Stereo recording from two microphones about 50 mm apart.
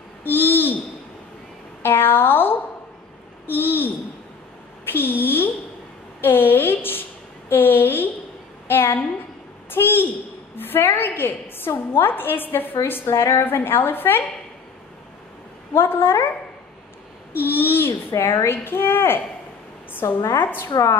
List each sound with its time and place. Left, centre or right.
0.2 s owl: left
1.8 s a sound: left
3.4 s babbling: left
4.9 s a sound: left
9.7 s a woman's voice: left
13.0 s a woman's voice: left
15.7 s a woman's voice: left
17.3 s a woman's voice: left
20.5 s a woman's voice: left